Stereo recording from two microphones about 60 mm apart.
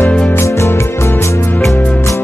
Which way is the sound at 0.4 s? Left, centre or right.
Left.